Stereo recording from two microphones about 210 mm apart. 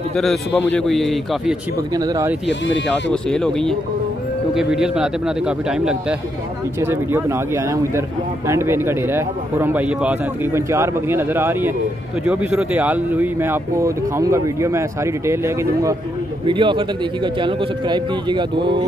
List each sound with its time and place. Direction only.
0.1 s a man's voice: centre (ahead or behind)
2.0 s speech: 15° right (ahead or behind)
2.4 s speech: 60° left (ahead or behind)
2.9 s a man's voice: 5° left (ahead or behind); by 18.9 s 20° right (ahead or behind)